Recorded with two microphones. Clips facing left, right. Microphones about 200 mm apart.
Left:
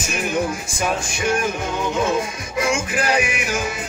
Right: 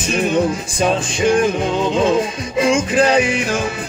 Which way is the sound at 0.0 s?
30° right (ahead or behind).